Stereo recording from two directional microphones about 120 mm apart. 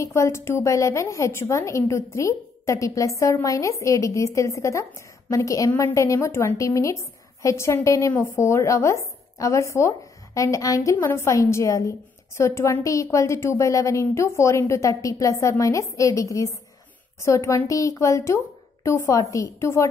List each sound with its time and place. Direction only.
0.0 s a woman's voice: 25° left (ahead or behind)